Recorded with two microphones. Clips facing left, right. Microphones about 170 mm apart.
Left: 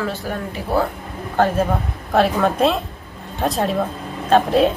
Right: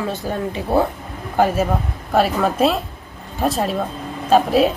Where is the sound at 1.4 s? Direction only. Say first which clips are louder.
Even; 10° right (ahead or behind).